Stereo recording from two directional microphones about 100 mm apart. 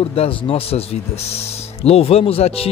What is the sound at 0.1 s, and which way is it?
Speech, 70° left (ahead or behind).